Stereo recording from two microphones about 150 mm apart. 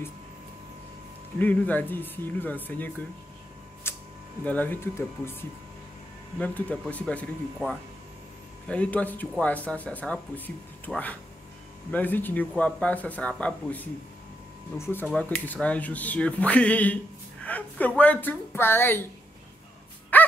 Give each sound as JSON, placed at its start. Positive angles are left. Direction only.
{"t": 1.4, "sound": "speech", "side_deg": 10}
{"t": 3.9, "sound": "a sound", "side_deg": 15}
{"t": 4.5, "sound": "speech", "side_deg": 10}
{"t": 6.4, "sound": "speech", "side_deg": 10}
{"t": 8.6, "sound": "speech", "side_deg": 10}
{"t": 20.1, "sound": "dog", "side_deg": 10}